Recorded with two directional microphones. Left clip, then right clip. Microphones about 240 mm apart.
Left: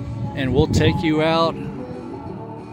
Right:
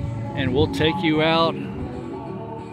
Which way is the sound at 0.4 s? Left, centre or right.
Centre.